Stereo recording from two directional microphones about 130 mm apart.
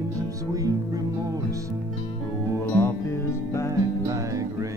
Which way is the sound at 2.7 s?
20° left (ahead or behind).